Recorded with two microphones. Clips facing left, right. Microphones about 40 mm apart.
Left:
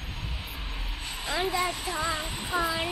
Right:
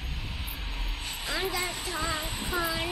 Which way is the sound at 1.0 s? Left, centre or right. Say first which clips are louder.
Left 2 dB; centre.